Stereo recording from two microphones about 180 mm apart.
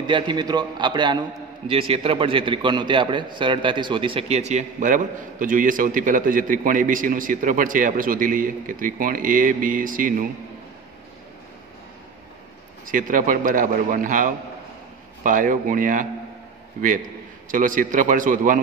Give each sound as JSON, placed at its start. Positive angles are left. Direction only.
{"t": 0.0, "sound": "a man's voice", "side_deg": -25}
{"t": 12.8, "sound": "a man's voice", "side_deg": -50}